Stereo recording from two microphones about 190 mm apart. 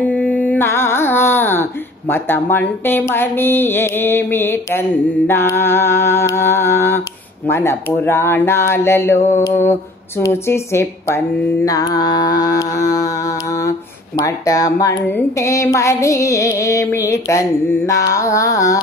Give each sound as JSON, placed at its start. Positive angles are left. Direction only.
{"t": 0.1, "sound": "music", "side_deg": 10}
{"t": 2.5, "sound": "speech", "side_deg": 10}